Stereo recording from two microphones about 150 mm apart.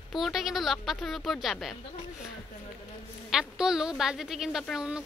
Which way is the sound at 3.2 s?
5° right (ahead or behind).